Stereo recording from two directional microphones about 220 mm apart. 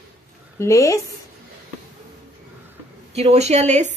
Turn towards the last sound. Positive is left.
turn(degrees=-30)  # may be behind; listen again after turning